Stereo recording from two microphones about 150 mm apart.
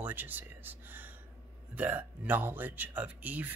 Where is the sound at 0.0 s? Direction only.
10° right (ahead or behind).